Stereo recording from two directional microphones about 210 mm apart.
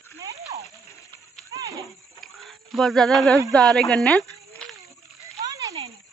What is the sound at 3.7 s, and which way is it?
Speech, centre (ahead or behind).